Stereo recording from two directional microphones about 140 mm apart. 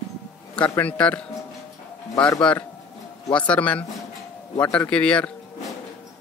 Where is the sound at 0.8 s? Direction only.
10° left (ahead or behind).